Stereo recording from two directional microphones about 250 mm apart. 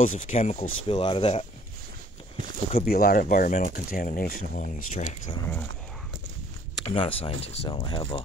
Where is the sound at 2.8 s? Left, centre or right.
Left.